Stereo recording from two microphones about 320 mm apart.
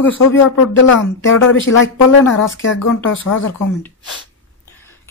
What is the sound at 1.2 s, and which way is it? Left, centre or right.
Speech, left.